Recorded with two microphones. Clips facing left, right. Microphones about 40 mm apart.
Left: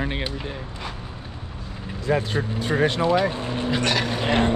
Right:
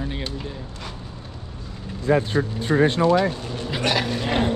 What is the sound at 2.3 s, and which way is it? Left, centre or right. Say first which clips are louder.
Speech: right 2 dB; left.